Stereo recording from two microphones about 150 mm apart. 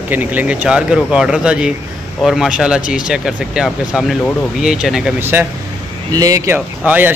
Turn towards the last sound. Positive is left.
turn(degrees=-10)  # may be behind; listen again after turning